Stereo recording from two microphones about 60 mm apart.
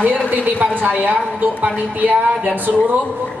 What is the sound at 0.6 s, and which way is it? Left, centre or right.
A man's voice, right.